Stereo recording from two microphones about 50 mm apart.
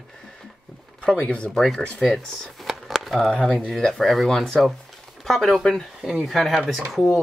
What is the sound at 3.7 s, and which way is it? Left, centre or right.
Chopping, centre.